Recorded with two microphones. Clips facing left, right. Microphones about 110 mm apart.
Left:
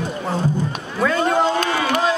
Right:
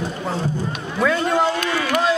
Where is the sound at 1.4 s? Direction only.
30° left (ahead or behind).